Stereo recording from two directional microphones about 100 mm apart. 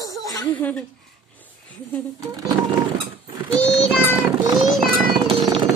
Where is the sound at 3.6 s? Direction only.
10° left (ahead or behind).